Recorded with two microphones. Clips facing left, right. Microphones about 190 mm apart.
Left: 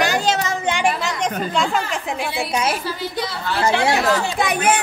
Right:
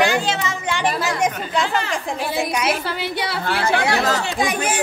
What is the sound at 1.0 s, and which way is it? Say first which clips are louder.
Speech: right 1 dB; 5° right (ahead or behind).